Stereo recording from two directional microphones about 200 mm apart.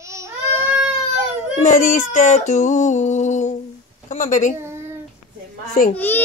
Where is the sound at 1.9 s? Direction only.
40° left (ahead or behind).